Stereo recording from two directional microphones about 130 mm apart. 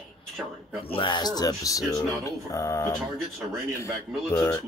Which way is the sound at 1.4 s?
25° left (ahead or behind).